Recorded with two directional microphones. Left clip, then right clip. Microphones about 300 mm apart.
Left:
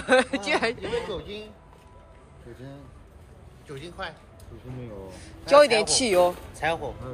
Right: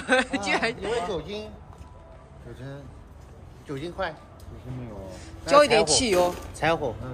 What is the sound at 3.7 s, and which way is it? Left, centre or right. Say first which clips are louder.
Speech: right 5 dB; right.